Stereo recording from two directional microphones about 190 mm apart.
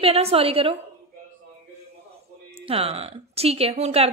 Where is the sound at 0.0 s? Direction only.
30° right (ahead or behind).